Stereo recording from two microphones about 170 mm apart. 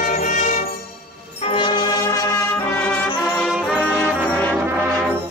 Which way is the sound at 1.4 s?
30° left (ahead or behind).